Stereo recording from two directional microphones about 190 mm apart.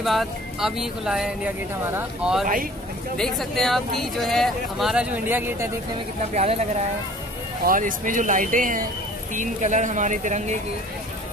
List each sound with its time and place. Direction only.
0.0 s speech: centre (ahead or behind)
6.3 s speech: 35° right (ahead or behind)
7.6 s speech: 45° right (ahead or behind)